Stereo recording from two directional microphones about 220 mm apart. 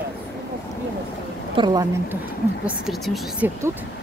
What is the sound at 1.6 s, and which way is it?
Speech, 20° right (ahead or behind).